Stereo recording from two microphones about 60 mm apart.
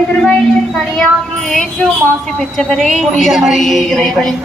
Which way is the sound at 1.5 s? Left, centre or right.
Centre.